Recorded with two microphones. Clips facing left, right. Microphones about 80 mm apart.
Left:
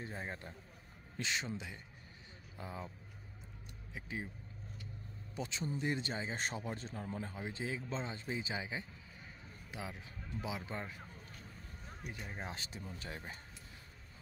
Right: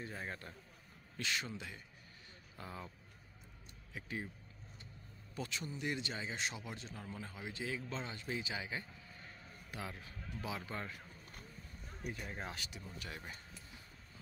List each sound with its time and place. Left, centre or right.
0.0 s speech: left
3.9 s speech: centre
5.3 s speech: left
12.3 s speech: centre
12.5 s speech: left